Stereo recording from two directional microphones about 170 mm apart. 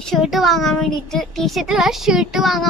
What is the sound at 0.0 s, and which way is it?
Child singing, centre (ahead or behind).